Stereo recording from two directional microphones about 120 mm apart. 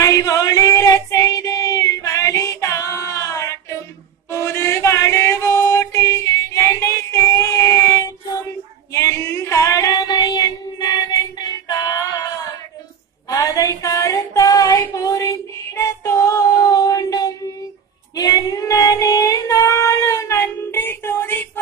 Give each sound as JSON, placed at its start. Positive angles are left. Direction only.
{"t": 0.0, "sound": "child singing", "side_deg": 30}
{"t": 4.3, "sound": "music", "side_deg": 20}
{"t": 8.9, "sound": "female singing", "side_deg": 25}
{"t": 13.3, "sound": "female singing", "side_deg": 30}